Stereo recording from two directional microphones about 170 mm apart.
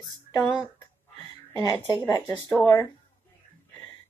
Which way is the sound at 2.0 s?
15° left (ahead or behind).